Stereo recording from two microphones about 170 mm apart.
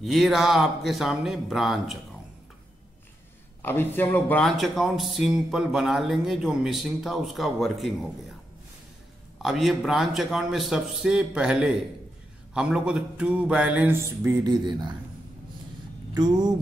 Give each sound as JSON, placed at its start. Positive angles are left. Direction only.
{"t": 0.0, "sound": "speech", "side_deg": 0}
{"t": 3.6, "sound": "speech", "side_deg": 10}
{"t": 9.4, "sound": "speech", "side_deg": 0}
{"t": 12.5, "sound": "mantra", "side_deg": -5}
{"t": 16.1, "sound": "a sound", "side_deg": -25}